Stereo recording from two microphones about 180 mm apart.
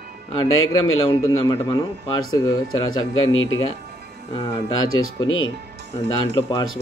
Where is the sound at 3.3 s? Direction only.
90° left.